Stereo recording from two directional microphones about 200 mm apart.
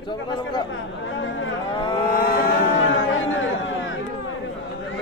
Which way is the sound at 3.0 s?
75° left (ahead or behind).